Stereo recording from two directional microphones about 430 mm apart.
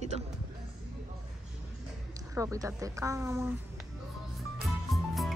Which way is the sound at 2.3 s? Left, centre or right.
Centre.